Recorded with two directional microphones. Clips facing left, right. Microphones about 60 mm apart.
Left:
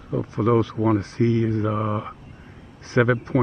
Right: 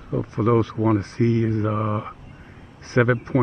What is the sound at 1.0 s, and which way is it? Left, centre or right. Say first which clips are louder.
Speech: even; right.